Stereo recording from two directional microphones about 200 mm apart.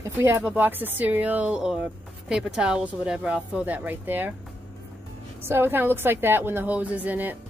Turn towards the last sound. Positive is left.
turn(degrees=-10)  # may be behind; listen again after turning